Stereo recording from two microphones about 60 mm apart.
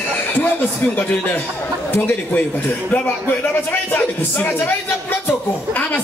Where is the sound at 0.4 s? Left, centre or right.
Left.